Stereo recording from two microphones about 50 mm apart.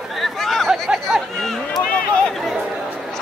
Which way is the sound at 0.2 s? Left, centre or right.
Centre.